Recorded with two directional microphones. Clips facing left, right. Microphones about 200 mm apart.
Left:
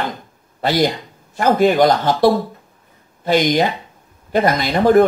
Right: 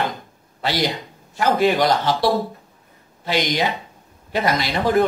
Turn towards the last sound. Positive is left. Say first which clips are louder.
# left 6 dB
turn(degrees=50)  # may be behind; listen again after turning